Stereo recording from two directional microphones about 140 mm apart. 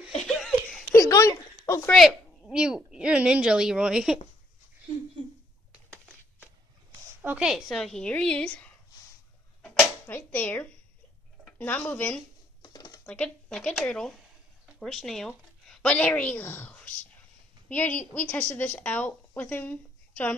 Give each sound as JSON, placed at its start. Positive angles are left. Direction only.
{"t": 0.2, "sound": "laughter", "side_deg": 5}
{"t": 0.9, "sound": "a sound", "side_deg": 25}
{"t": 1.9, "sound": "a woman's voice", "side_deg": 5}
{"t": 7.2, "sound": "a woman's voice", "side_deg": -10}
{"t": 10.0, "sound": "a woman's voice", "side_deg": 15}
{"t": 11.4, "sound": "a sound", "side_deg": 15}
{"t": 11.9, "sound": "a woman's voice", "side_deg": 10}
{"t": 12.6, "sound": "a sound", "side_deg": 30}
{"t": 13.0, "sound": "a woman's voice", "side_deg": 10}